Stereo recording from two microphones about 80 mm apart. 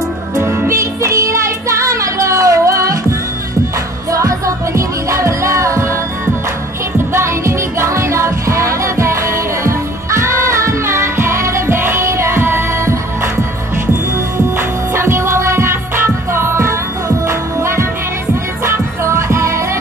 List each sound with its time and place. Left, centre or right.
0.4 s music: right
4.1 s music: right
7.2 s music: right
15.0 s music: right